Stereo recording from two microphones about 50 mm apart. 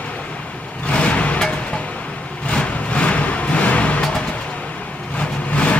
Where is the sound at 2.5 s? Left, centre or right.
Left.